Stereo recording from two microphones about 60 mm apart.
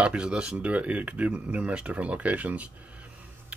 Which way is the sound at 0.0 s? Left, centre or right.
Centre.